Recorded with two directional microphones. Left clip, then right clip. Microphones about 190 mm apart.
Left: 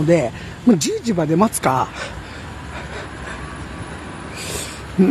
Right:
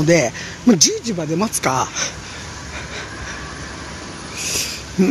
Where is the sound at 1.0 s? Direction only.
20° left (ahead or behind).